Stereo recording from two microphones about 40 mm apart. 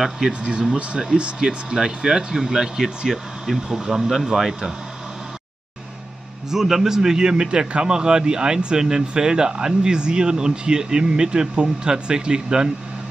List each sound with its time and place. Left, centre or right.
0.3 s speech: right
4.1 s speech: centre
6.5 s speech: centre